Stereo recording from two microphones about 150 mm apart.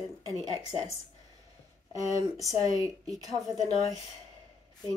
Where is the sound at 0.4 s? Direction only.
25° right (ahead or behind).